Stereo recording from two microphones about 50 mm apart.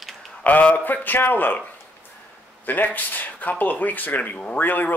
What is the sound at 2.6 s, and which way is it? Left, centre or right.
Speech, left.